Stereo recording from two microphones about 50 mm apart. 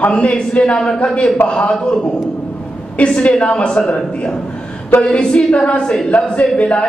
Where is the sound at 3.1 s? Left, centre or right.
Left.